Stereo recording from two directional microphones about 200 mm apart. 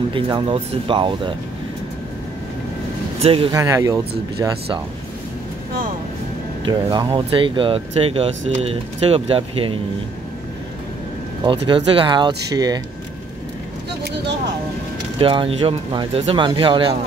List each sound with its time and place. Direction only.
0.1 s speech: 25° right (ahead or behind)
3.2 s speech: 30° right (ahead or behind)
3.5 s speech: 15° right (ahead or behind)
6.6 s speech: 20° right (ahead or behind)
11.4 s speech: 25° right (ahead or behind)
15.1 s speech: 25° right (ahead or behind)